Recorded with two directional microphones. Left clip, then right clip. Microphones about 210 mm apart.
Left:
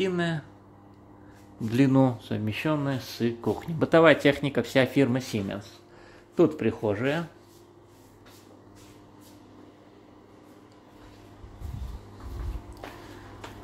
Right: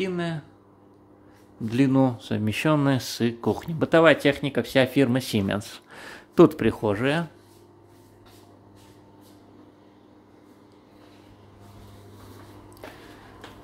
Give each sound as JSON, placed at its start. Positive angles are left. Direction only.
{"t": 0.0, "sound": "speech", "side_deg": -5}
{"t": 1.7, "sound": "speech", "side_deg": -5}
{"t": 5.6, "sound": "speech", "side_deg": -35}